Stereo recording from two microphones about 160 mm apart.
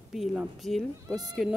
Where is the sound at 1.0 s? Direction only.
25° right (ahead or behind).